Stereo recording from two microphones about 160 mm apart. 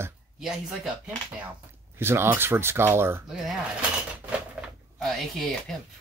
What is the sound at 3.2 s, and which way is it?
Speech, centre (ahead or behind).